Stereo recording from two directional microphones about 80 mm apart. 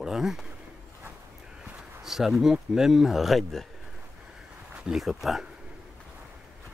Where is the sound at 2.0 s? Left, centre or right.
Centre.